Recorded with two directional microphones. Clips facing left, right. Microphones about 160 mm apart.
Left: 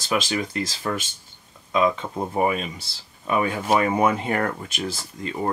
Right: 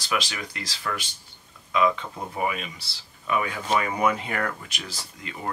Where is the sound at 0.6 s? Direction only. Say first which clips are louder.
Left 6 dB; 45° left (ahead or behind).